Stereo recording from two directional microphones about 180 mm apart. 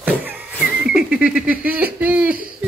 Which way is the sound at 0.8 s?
5° right (ahead or behind).